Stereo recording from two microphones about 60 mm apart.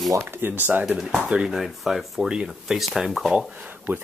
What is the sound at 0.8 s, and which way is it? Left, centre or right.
Speech, centre.